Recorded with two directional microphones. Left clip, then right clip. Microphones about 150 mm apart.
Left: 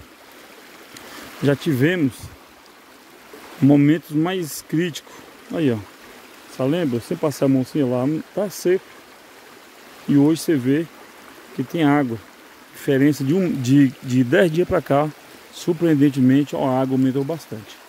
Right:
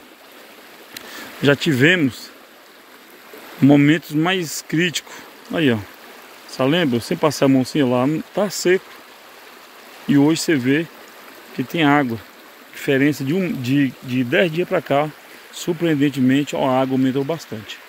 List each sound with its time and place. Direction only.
0.9 s speech: 15° left (ahead or behind)
3.6 s speech: 10° left (ahead or behind)
10.0 s speech: 15° left (ahead or behind); by 13.5 s 35° left (ahead or behind)
13.6 s speech: 45° left (ahead or behind)
14.7 s speech: 30° left (ahead or behind); by 17.7 s 10° left (ahead or behind)